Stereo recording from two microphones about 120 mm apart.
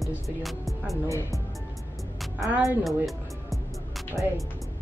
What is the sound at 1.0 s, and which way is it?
Speech, 25° left (ahead or behind).